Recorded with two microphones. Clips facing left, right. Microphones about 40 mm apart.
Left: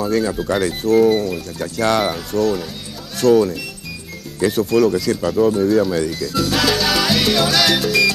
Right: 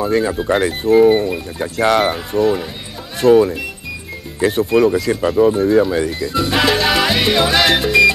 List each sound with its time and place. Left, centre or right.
0.0 s speech: right